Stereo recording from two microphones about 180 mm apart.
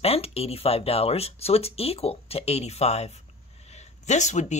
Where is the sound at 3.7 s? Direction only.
40° left (ahead or behind).